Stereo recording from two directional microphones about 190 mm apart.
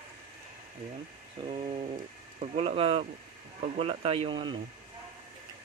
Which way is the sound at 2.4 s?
35° right (ahead or behind).